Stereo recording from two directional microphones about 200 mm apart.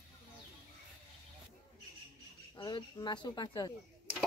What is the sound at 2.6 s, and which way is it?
Speech, 20° left (ahead or behind).